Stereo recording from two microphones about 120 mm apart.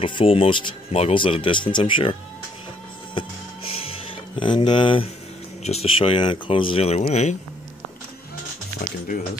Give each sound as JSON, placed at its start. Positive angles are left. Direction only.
{"t": 0.0, "sound": "speech", "side_deg": 45}
{"t": 3.2, "sound": "music", "side_deg": 50}
{"t": 5.6, "sound": "speech", "side_deg": 60}